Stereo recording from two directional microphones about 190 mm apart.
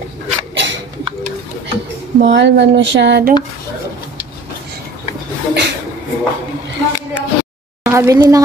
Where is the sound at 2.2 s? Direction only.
70° right (ahead or behind).